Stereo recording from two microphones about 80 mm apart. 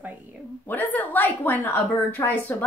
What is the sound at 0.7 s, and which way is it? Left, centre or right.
A woman's voice, left.